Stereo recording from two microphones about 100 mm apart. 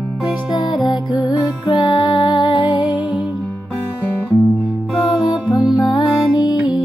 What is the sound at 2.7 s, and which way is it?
Music, 10° right (ahead or behind).